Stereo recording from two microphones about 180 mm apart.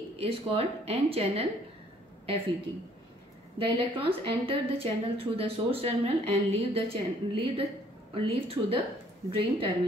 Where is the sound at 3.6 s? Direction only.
30° right (ahead or behind).